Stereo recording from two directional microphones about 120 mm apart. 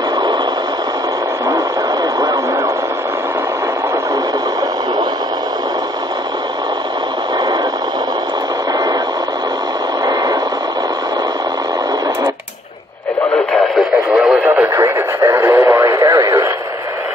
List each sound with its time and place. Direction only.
13.5 s radio: 5° right (ahead or behind)
14.7 s radio: 25° right (ahead or behind)